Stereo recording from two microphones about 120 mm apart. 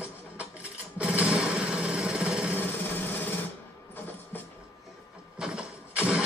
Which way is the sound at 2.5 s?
15° left (ahead or behind).